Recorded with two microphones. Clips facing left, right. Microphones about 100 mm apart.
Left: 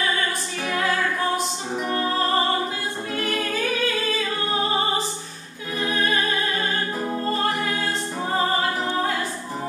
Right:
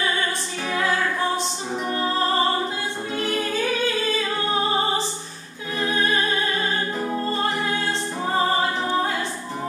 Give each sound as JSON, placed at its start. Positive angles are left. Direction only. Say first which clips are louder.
{"t": 0.7, "sound": "music", "louder": "even", "side_deg": -25}
{"t": 3.2, "sound": "music", "louder": "right 2 dB", "side_deg": -30}